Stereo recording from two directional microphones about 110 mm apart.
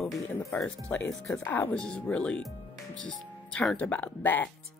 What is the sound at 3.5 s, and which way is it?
Speech, 10° left (ahead or behind).